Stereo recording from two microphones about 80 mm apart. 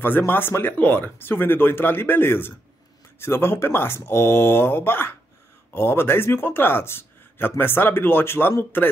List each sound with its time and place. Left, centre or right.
0.3 s speech: left